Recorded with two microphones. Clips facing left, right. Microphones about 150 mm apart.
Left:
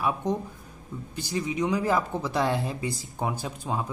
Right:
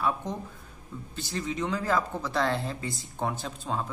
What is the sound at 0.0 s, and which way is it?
A woman's voice, 20° left (ahead or behind).